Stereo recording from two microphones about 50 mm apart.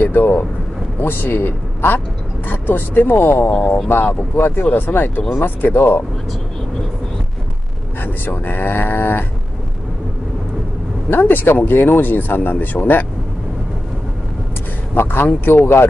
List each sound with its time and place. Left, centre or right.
0.0 s speech: left
3.5 s speech: left
3.9 s speech: left
8.0 s speech: left
11.1 s speech: left
15.0 s speech: left